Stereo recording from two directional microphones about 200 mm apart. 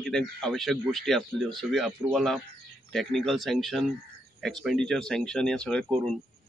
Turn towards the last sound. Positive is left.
turn(degrees=5)  # may be behind; listen again after turning